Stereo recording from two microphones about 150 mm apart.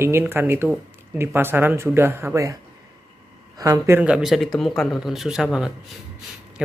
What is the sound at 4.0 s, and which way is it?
Speech, 5° right (ahead or behind).